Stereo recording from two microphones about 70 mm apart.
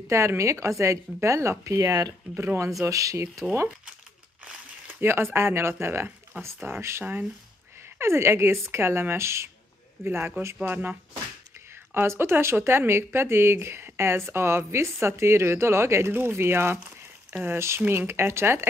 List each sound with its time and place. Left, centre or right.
0.1 s speech: right
2.3 s speech: right
2.6 s speech: right
4.8 s speech: right
6.4 s speech: right
6.8 s speech: right
10.0 s speech: right
10.4 s speech: right
10.7 s speech: right
11.9 s speech: right